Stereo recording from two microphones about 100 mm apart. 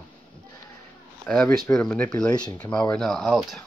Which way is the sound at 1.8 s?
10° left (ahead or behind).